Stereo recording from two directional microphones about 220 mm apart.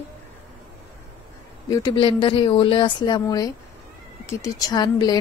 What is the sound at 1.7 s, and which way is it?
A woman's voice, 20° left (ahead or behind).